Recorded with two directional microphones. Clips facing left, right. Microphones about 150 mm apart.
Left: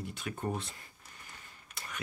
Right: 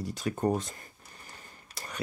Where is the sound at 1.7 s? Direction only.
35° right (ahead or behind).